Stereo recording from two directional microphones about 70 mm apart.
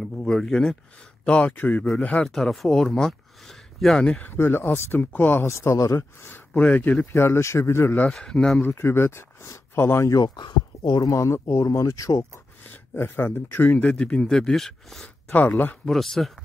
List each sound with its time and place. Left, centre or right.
0.0 s speech: centre
1.2 s speech: centre
2.2 s speech: centre
4.2 s speech: left
5.5 s speech: left
6.5 s speech: left
7.1 s speech: left
8.1 s speech: centre
8.6 s speech: left
10.2 s speech: left
11.1 s speech: left
12.9 s speech: left; by 15.0 s centre
15.3 s speech: left
15.8 s speech: centre